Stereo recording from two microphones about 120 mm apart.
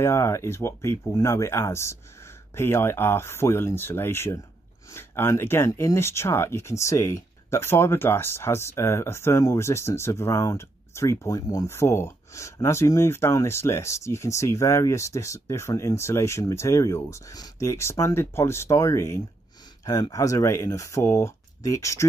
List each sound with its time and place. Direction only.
0.0 s speech: 25° left (ahead or behind)